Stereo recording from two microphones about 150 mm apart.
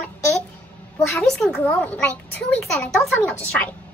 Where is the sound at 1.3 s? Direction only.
5° left (ahead or behind).